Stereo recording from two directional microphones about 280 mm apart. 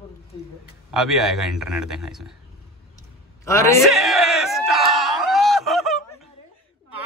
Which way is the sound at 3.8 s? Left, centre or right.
Centre.